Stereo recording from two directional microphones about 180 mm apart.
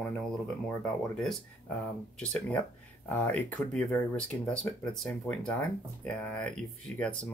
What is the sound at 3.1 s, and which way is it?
Speech, 10° left (ahead or behind).